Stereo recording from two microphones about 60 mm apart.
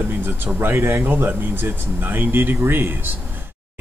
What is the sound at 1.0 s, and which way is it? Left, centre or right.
Speech, right.